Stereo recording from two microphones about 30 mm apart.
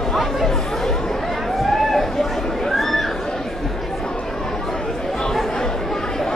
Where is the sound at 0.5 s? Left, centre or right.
Centre.